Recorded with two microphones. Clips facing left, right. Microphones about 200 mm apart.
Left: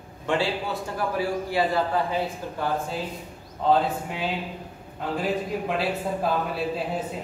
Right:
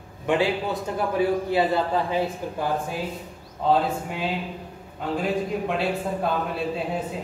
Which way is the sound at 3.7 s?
Centre (ahead or behind).